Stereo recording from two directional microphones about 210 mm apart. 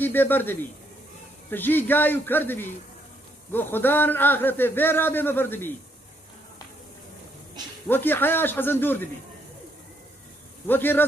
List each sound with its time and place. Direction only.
0.0 s a man's voice: 10° left (ahead or behind)
7.9 s a man's voice: 10° left (ahead or behind)
10.7 s a man's voice: 10° left (ahead or behind)